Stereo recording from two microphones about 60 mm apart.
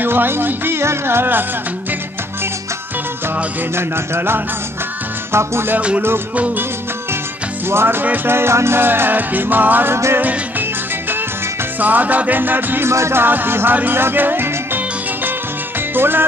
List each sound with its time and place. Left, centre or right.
0.0 s music: right
3.7 s music: right
5.8 s music: right
7.7 s music: right
11.8 s music: right
12.9 s music: right
13.2 s music: right
15.9 s music: right